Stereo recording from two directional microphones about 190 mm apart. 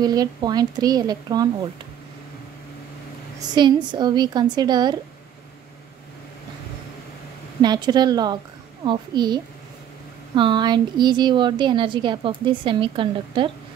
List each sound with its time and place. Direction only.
0.0 s a woman's voice: 20° right (ahead or behind)
3.3 s a woman's voice: 25° right (ahead or behind)
7.6 s a woman's voice: 20° right (ahead or behind)